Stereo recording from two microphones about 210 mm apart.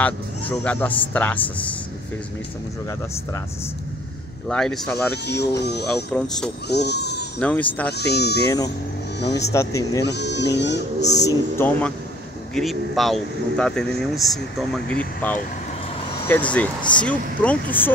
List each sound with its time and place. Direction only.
0.0 s a man's voice: 5° left (ahead or behind)
4.5 s speech: 5° left (ahead or behind)
5.2 s speech: 50° left (ahead or behind)
6.1 s speech: 5° left (ahead or behind)
6.7 s speech: 50° left (ahead or behind)
7.3 s a man's voice: 5° left (ahead or behind)
8.0 s speech: 50° left (ahead or behind)
9.5 s a man's voice: 15° left (ahead or behind)
10.0 s speech: 55° left (ahead or behind)
11.2 s a man's voice: 10° left (ahead or behind)
12.5 s a man's voice: centre (ahead or behind)